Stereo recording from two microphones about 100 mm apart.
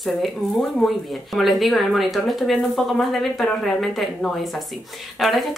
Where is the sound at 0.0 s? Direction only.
Centre (ahead or behind).